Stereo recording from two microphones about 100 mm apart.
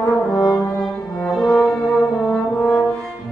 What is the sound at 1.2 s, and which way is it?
Brass instrument, 5° left (ahead or behind).